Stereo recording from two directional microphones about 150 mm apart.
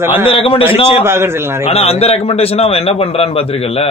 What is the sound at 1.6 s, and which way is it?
Speech, 40° left (ahead or behind).